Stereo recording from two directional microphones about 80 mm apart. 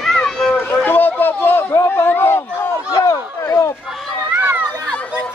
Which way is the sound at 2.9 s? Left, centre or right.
Left.